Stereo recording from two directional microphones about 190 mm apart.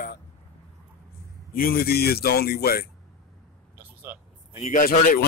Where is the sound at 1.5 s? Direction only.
50° left (ahead or behind).